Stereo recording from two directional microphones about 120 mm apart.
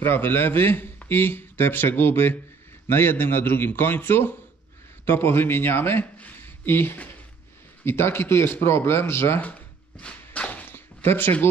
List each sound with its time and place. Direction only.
0.0 s a man's voice: 20° left (ahead or behind)